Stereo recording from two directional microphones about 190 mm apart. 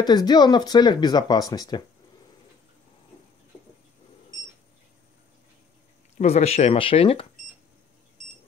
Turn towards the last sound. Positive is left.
turn(degrees=30)  # may be behind; listen again after turning